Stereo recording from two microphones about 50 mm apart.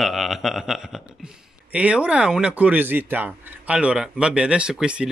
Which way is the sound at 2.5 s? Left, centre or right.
Right.